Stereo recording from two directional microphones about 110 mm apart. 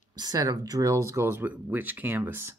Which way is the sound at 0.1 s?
35° right (ahead or behind).